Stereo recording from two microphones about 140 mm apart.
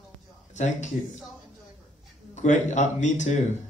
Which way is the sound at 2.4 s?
60° left (ahead or behind).